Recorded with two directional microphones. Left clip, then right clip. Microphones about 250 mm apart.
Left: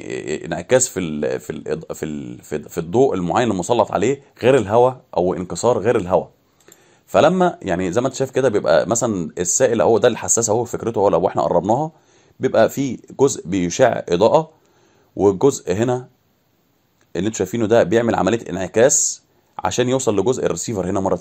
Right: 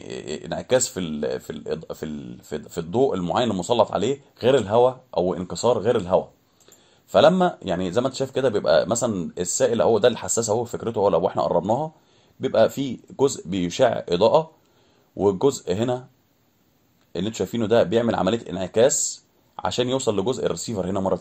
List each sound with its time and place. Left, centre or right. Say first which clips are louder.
0.0 s speech: left 7 dB; left
17.1 s speech: left 5 dB; left